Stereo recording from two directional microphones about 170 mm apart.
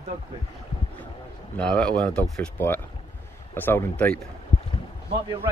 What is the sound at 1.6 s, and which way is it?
Speech, 5° left (ahead or behind).